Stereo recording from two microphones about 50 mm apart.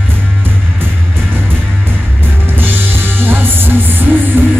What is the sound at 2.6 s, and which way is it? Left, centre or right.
Music, right.